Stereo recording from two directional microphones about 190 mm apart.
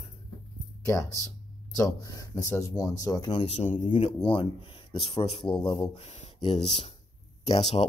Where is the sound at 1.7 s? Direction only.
20° left (ahead or behind).